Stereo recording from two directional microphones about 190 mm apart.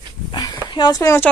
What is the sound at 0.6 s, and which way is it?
Speech, 25° left (ahead or behind).